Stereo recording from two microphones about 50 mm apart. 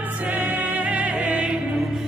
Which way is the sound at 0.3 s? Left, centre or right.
Right.